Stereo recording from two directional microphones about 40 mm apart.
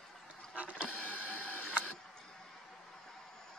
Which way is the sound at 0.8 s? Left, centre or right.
Left.